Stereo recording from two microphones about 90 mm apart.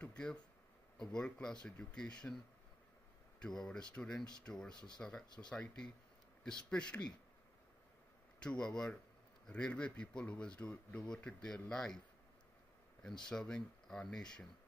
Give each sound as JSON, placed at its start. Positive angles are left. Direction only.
{"t": 0.0, "sound": "a sound", "side_deg": 10}
{"t": 0.9, "sound": "speech", "side_deg": 10}
{"t": 6.4, "sound": "speech", "side_deg": 10}
{"t": 8.4, "sound": "speech", "side_deg": 10}
{"t": 13.2, "sound": "speech", "side_deg": 10}